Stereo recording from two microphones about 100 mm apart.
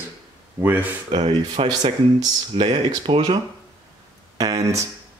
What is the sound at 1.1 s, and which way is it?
Speech, 65° right (ahead or behind).